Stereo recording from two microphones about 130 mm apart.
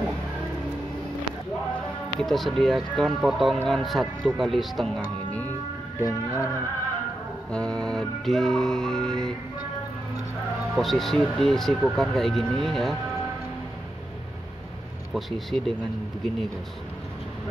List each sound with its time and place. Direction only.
2.1 s speech: centre (ahead or behind)
5.9 s music: 25° left (ahead or behind)
7.5 s speech: 5° left (ahead or behind)
10.7 s speech: centre (ahead or behind)
15.1 s speech: centre (ahead or behind)